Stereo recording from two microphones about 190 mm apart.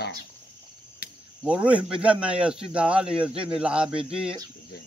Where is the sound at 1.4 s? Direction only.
5° right (ahead or behind).